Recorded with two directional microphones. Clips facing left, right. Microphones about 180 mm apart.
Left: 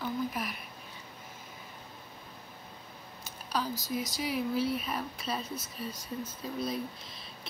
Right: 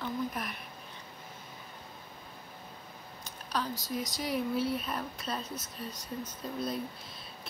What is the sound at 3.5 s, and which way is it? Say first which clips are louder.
Speech: left 1 dB; 5° left (ahead or behind).